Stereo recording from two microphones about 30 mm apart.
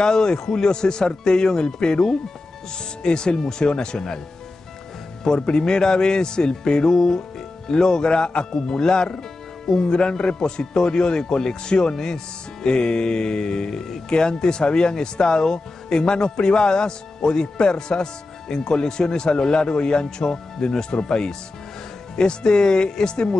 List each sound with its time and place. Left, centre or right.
0.0 s speech: left
5.2 s speech: left